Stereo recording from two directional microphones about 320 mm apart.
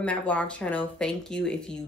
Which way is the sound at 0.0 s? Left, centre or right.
Centre.